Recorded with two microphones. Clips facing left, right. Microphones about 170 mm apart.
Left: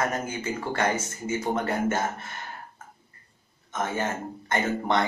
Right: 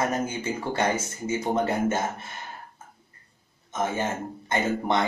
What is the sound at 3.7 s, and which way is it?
A man's voice, 15° right (ahead or behind).